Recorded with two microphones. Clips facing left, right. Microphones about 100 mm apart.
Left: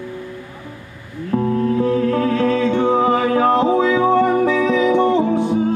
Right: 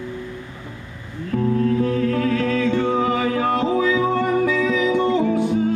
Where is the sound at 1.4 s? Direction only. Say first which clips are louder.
Left 1 dB; 30° left (ahead or behind).